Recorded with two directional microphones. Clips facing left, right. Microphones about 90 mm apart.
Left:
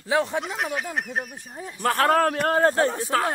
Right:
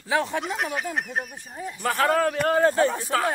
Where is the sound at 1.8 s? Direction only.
50° left (ahead or behind).